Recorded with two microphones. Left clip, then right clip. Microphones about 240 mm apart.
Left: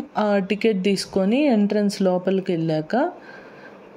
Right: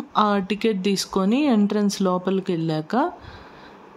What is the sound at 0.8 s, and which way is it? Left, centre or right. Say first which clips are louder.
Speech: left 1 dB; centre.